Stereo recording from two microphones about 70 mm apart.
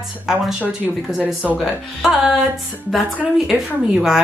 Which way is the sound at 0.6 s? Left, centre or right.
Right.